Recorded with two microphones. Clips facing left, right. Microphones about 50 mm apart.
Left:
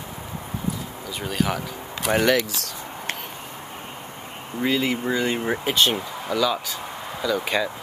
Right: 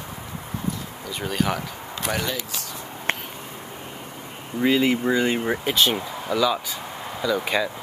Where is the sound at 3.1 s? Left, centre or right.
Right.